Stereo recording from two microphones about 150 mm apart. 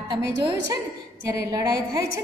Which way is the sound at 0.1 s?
30° right (ahead or behind).